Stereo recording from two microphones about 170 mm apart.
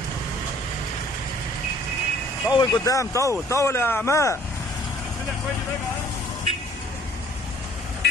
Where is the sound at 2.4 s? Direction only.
20° left (ahead or behind).